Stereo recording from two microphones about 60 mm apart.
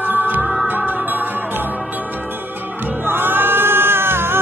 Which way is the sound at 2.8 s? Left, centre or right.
Right.